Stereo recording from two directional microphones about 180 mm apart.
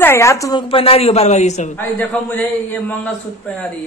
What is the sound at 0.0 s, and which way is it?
Speech, 15° left (ahead or behind).